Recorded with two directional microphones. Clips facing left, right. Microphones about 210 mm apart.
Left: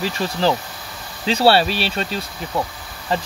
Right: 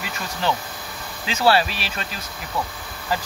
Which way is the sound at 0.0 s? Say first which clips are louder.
Left 7 dB; 30° left (ahead or behind).